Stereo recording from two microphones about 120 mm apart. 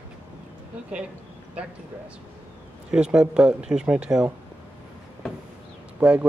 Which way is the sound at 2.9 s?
5° right (ahead or behind).